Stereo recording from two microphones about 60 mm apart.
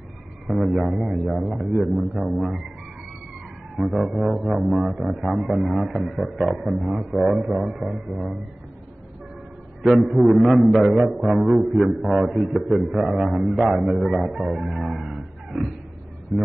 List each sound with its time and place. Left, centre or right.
0.5 s a man's voice: centre
3.7 s a man's voice: centre
9.8 s a man's voice: centre